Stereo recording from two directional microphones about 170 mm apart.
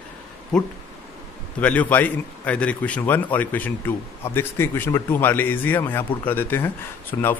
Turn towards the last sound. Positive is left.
turn(degrees=10)  # may be behind; listen again after turning